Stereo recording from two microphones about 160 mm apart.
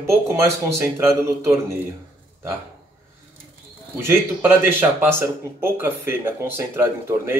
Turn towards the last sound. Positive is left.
turn(degrees=-15)  # may be behind; listen again after turning